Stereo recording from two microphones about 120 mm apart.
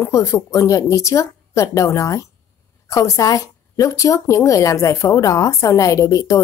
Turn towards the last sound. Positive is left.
turn(degrees=30)  # may be behind; listen again after turning